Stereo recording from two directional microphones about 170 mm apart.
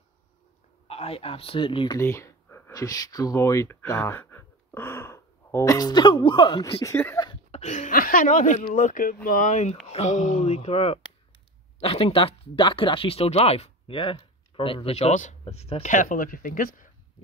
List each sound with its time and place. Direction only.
0.8 s speech: 35° left (ahead or behind)
2.0 s speech: 15° left (ahead or behind)
6.8 s speech: 15° left (ahead or behind)
7.5 s speech: 45° left (ahead or behind)